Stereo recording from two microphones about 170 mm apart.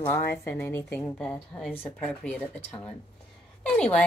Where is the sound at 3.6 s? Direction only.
5° left (ahead or behind).